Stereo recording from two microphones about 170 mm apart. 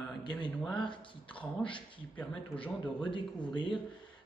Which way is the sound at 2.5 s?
30° left (ahead or behind).